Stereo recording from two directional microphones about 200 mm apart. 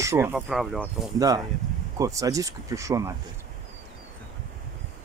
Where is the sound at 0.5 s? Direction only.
Centre (ahead or behind).